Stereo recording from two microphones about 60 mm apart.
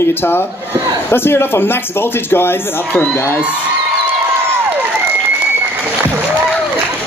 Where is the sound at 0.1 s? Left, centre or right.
Left.